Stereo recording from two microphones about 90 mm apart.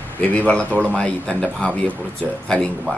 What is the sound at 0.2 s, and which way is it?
Speech, 15° left (ahead or behind).